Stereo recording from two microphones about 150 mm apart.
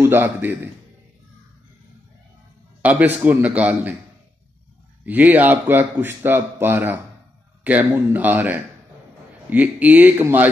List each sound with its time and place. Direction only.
0.0 s speech: 15° right (ahead or behind)
2.8 s speech: 10° right (ahead or behind)
5.0 s speech: 10° right (ahead or behind)